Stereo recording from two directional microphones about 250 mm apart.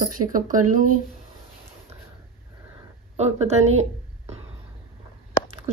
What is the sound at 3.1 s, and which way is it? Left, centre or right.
Speech, right.